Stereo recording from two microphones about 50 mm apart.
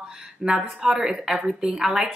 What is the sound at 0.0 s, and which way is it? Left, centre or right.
A woman's voice, centre.